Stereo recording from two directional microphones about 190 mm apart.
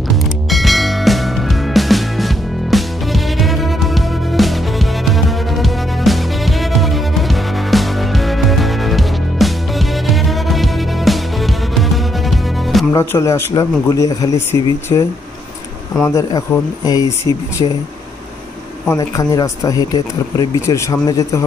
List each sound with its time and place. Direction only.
0.1 s music: centre (ahead or behind)
12.9 s speech: 15° left (ahead or behind)
18.9 s speech: 15° left (ahead or behind)